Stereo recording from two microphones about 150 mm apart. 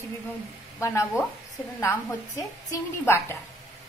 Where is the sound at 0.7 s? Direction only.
20° left (ahead or behind).